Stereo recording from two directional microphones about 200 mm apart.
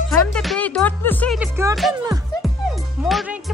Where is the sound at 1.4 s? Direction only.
15° right (ahead or behind).